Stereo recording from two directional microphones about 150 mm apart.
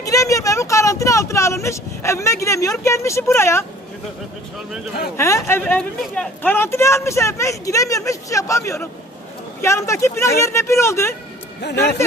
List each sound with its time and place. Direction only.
0.0 s a woman's voice: 20° left (ahead or behind)
5.1 s a woman's voice: 20° left (ahead or behind)
11.6 s speech: 90° left